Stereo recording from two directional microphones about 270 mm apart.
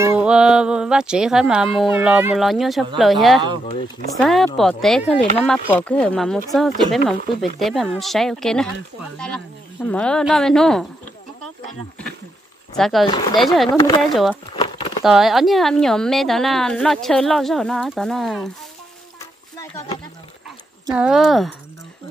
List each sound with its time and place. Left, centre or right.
0.0 s a woman's voice: centre
3.6 s speech: centre
4.2 s a woman's voice: centre
9.8 s a woman's voice: centre
12.7 s a woman's voice: centre
13.0 s speech: centre
13.4 s a woman's voice: centre
13.7 s speech: centre
14.1 s a woman's voice: centre
14.5 s a sound: centre
15.0 s a woman's voice: centre
20.9 s a woman's voice: centre